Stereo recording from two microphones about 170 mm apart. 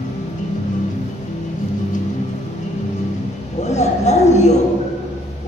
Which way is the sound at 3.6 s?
40° left (ahead or behind).